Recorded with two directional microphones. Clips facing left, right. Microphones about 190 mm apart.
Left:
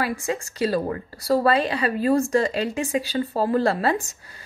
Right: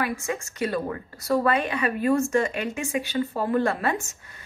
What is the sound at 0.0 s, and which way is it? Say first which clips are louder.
A woman's voice: left 2 dB; 35° left (ahead or behind).